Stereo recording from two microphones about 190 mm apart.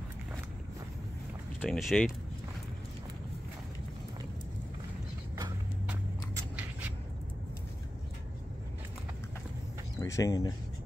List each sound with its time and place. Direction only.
1.6 s speech: centre (ahead or behind)
9.9 s speech: 15° left (ahead or behind)